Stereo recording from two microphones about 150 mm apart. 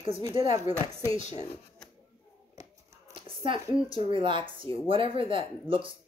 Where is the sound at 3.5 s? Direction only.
35° right (ahead or behind).